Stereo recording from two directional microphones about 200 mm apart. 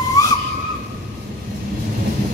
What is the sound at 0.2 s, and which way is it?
Whistle, 15° left (ahead or behind).